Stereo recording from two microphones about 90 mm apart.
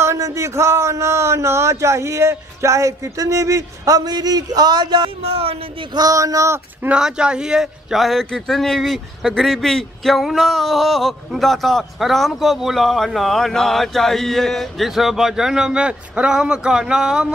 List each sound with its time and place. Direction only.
0.0 s a man's voice: 35° right (ahead or behind); by 5.1 s 55° right (ahead or behind)
5.3 s speech: 90° right
5.9 s a man's voice: 40° right (ahead or behind)
6.9 s a man's voice: 10° right (ahead or behind)